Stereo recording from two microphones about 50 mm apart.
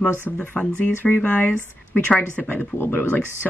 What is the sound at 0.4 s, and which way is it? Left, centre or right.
Speech, left.